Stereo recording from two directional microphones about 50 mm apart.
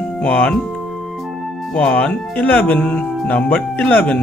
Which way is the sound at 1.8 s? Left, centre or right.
Left.